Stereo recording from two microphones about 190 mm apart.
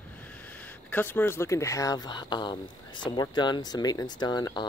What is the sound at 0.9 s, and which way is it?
Speech, 10° left (ahead or behind).